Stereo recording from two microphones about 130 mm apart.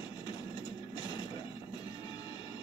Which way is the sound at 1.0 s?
35° left (ahead or behind).